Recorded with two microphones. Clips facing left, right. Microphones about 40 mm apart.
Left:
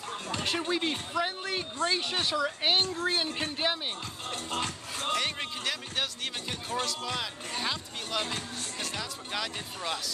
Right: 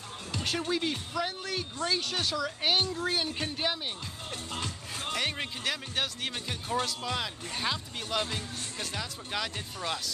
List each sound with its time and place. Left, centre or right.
0.3 s speech: centre
5.1 s speech: centre